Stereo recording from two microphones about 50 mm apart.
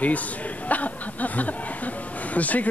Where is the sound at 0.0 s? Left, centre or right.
Left.